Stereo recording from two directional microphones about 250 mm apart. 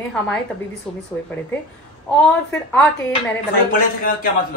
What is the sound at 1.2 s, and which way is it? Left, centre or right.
Speech, left.